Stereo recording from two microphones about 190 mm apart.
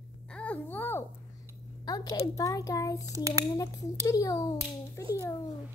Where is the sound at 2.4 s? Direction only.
15° left (ahead or behind).